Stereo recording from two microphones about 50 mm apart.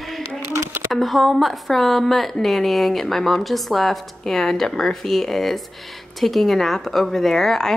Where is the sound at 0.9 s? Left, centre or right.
Centre.